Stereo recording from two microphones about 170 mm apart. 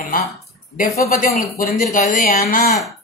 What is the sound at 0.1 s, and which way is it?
Speech, 50° left (ahead or behind).